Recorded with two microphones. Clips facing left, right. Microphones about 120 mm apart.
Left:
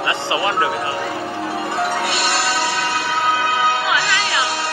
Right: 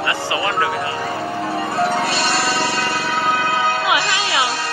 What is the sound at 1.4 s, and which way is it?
Music, centre (ahead or behind).